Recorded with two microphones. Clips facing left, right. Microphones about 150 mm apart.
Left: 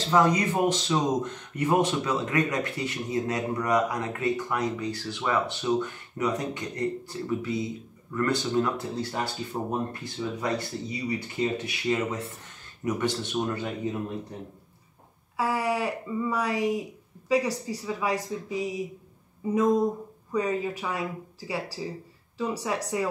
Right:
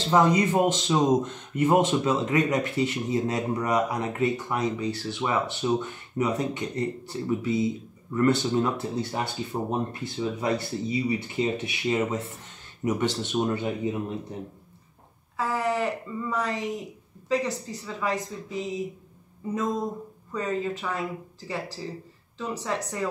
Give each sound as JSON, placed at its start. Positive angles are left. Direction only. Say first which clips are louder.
{"t": 0.1, "sound": "speech", "louder": "right 2 dB", "side_deg": -25}
{"t": 15.3, "sound": "speech", "louder": "even", "side_deg": 10}